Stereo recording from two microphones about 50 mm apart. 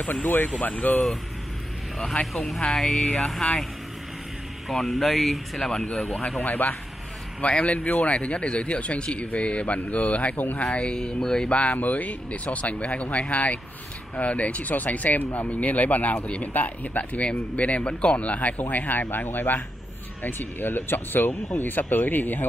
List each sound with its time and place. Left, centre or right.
0.0 s speech: left
2.3 s speech: centre
4.6 s speech: centre
6.4 s speech: left
10.6 s speech: left
11.5 s speech: left